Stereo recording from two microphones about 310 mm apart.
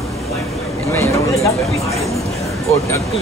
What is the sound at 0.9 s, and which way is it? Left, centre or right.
Speech, centre.